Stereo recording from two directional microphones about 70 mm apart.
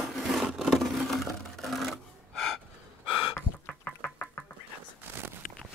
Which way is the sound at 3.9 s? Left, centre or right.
Left.